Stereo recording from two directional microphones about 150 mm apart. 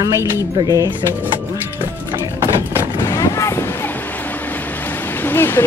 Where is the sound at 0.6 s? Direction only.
30° right (ahead or behind).